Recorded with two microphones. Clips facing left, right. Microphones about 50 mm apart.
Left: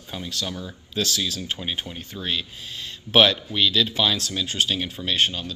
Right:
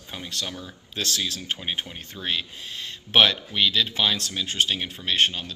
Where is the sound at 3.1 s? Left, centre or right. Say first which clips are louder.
Left 2 dB; right.